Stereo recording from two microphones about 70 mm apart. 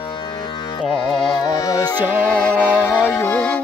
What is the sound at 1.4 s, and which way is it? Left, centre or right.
Music, left.